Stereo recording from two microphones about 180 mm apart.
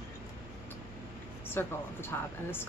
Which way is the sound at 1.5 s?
10° left (ahead or behind).